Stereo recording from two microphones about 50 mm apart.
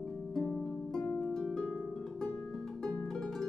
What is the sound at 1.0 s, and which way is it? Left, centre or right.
Harp, left.